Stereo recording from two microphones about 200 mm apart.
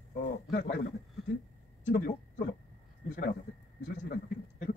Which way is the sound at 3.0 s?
40° left (ahead or behind).